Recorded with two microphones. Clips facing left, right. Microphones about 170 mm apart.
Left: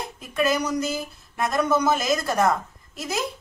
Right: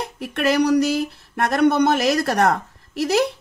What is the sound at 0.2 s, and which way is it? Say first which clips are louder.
A woman's voice: right 5 dB; 70° right (ahead or behind).